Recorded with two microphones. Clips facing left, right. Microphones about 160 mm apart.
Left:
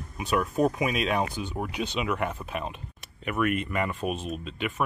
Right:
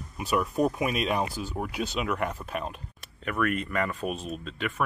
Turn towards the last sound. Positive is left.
turn(degrees=5)  # may be behind; listen again after turning